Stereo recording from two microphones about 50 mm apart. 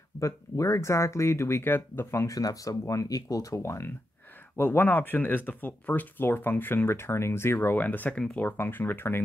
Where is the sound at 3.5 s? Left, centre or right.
Left.